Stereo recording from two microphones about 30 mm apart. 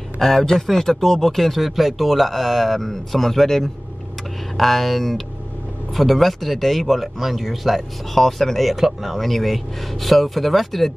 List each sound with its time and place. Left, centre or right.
0.2 s speech: centre
1.2 s speech: centre